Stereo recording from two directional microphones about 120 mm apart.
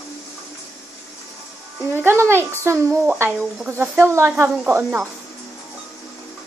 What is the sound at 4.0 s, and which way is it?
A child's voice, 20° right (ahead or behind).